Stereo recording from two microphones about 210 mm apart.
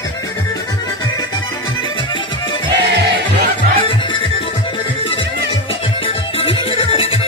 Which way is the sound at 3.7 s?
25° left (ahead or behind).